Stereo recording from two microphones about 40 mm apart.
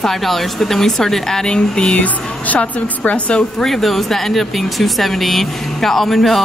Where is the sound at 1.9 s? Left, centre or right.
Left.